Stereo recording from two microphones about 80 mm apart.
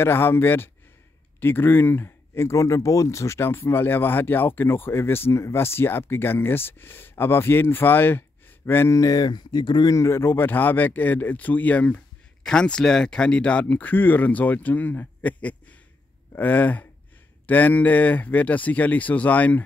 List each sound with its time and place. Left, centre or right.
0.0 s speech: left
8.9 s speech: left
9.8 s speech: left; by 19.6 s centre